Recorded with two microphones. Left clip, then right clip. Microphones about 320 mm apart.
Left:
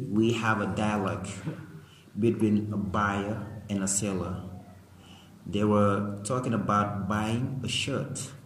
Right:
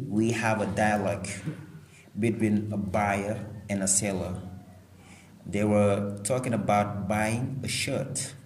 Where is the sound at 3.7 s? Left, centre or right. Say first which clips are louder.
Right 3 dB; centre.